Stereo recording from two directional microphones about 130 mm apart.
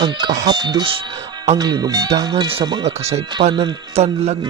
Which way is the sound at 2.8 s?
55° right (ahead or behind).